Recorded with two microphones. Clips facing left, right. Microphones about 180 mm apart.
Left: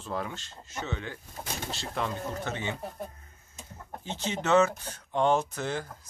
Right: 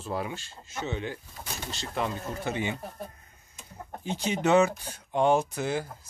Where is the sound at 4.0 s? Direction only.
15° right (ahead or behind).